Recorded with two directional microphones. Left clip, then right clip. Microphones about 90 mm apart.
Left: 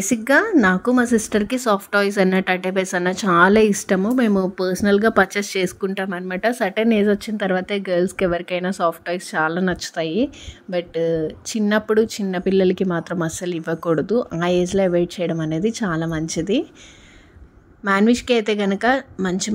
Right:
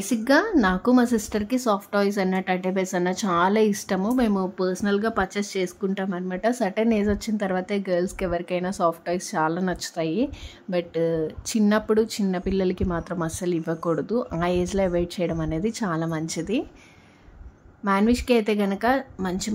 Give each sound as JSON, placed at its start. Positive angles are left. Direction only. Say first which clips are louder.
{"t": 0.1, "sound": "speech", "louder": "left 4 dB", "side_deg": 40}
{"t": 4.0, "sound": "speech", "louder": "left 1 dB", "side_deg": 25}
{"t": 4.4, "sound": "speech", "louder": "left 5 dB", "side_deg": 50}
{"t": 6.5, "sound": "a woman's voice", "louder": "left 5 dB", "side_deg": 25}
{"t": 10.7, "sound": "speech", "louder": "left 3 dB", "side_deg": 15}
{"t": 17.8, "sound": "a woman's voice", "louder": "left 4 dB", "side_deg": 45}